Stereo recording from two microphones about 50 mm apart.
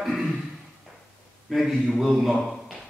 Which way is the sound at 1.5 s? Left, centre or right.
Centre.